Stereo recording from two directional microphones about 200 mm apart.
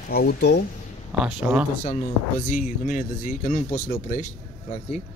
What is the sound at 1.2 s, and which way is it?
Speech, 5° right (ahead or behind).